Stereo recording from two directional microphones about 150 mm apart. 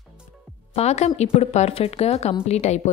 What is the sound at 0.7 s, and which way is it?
A woman's voice, 45° left (ahead or behind).